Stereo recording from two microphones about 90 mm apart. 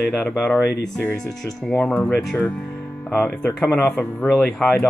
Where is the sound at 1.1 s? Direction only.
5° left (ahead or behind).